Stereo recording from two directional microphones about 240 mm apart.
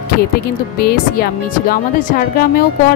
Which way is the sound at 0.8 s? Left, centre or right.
Left.